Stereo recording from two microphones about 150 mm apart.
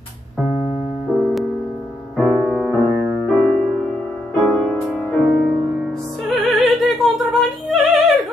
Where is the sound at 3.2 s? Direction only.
5° left (ahead or behind).